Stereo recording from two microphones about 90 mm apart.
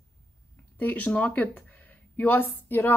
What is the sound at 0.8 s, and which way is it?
Speech, 20° left (ahead or behind).